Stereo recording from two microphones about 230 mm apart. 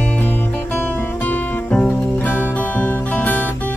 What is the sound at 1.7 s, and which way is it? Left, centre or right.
Music, centre.